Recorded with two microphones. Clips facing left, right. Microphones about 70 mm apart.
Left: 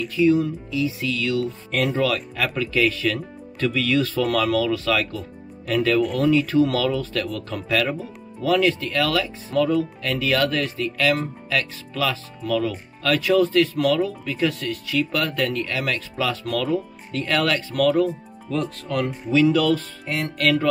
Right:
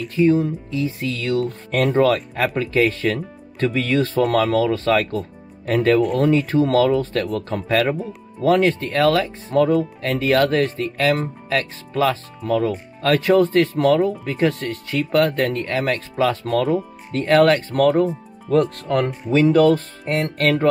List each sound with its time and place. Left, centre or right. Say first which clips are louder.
0.1 s speech: right 2 dB; right